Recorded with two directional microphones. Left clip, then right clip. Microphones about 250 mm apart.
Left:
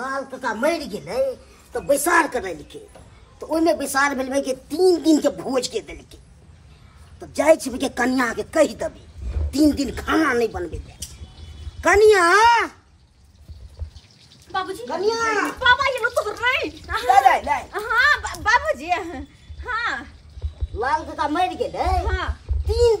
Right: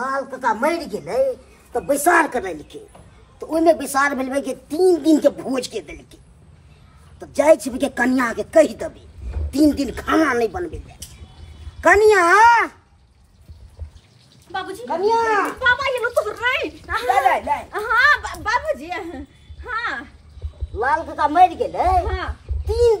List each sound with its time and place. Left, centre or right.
0.0 s a woman's voice: centre
7.2 s speech: centre
14.5 s speech: centre
18.4 s a child's voice: centre
19.6 s speech: centre